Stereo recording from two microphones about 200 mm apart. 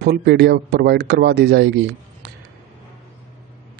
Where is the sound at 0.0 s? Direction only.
55° right (ahead or behind).